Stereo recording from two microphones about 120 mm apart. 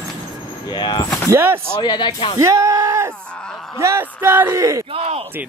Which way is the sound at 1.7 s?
40° left (ahead or behind).